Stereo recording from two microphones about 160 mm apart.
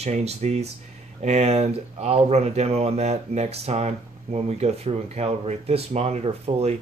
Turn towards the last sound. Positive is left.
turn(degrees=-40)  # may be behind; listen again after turning